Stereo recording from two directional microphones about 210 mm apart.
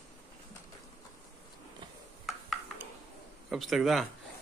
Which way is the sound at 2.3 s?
Centre (ahead or behind).